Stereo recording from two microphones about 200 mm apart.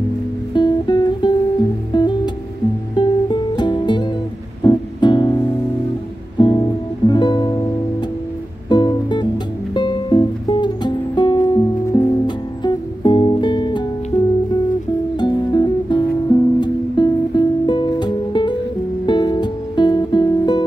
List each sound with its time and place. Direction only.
0.6 s music: 20° left (ahead or behind)
8.6 s music: 20° left (ahead or behind)
15.1 s music: 20° left (ahead or behind)